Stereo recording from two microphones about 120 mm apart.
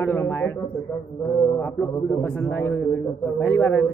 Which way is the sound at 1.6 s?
25° left (ahead or behind).